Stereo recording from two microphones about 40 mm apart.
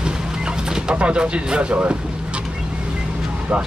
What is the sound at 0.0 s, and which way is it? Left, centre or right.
Vehicle, centre.